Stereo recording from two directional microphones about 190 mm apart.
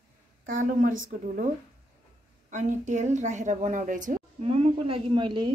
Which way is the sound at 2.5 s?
40° right (ahead or behind).